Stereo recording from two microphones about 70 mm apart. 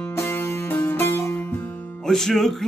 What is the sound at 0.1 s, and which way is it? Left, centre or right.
Music, left.